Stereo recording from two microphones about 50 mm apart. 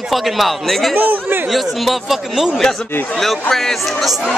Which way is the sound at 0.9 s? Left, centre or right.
Right.